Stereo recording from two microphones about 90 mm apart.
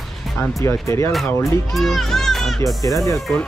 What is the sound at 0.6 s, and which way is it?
Speech, 35° left (ahead or behind).